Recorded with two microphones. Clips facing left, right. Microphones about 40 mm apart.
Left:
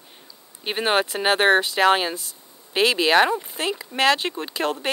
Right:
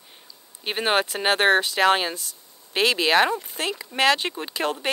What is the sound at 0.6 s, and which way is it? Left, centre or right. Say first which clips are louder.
Speech: left 1 dB; centre.